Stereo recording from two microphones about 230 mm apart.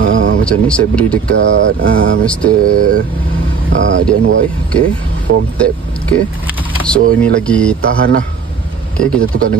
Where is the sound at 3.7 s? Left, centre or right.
Right.